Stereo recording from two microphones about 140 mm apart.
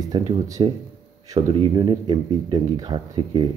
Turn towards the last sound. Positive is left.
turn(degrees=-35)  # may be behind; listen again after turning